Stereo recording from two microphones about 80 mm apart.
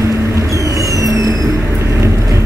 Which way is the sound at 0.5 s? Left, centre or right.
Right.